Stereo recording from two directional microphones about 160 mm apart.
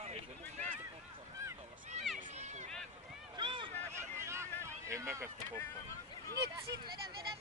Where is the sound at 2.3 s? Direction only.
45° right (ahead or behind).